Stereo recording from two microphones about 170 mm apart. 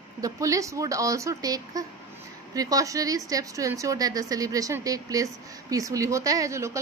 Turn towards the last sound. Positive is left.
turn(degrees=-15)  # may be behind; listen again after turning